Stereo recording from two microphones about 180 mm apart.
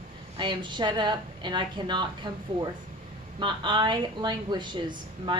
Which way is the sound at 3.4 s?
25° right (ahead or behind).